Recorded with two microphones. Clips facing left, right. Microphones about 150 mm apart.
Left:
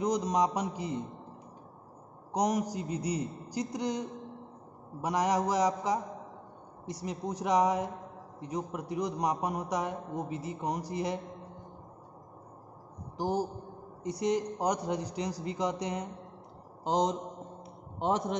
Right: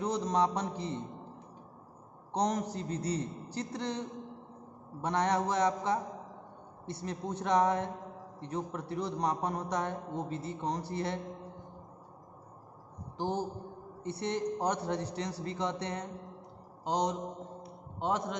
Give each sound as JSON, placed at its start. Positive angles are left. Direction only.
{"t": 0.0, "sound": "a man's voice", "side_deg": 15}
{"t": 2.3, "sound": "a man's voice", "side_deg": 10}
{"t": 13.2, "sound": "a man's voice", "side_deg": 10}
{"t": 16.8, "sound": "mantra", "side_deg": 25}